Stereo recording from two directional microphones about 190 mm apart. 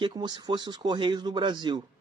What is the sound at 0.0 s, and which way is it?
Speech, 25° right (ahead or behind).